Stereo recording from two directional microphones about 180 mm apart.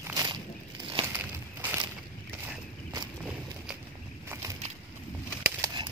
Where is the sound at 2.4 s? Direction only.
20° right (ahead or behind).